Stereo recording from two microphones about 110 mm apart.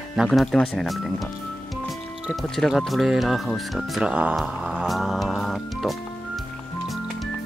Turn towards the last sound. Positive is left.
turn(degrees=0)  # may be behind; listen again after turning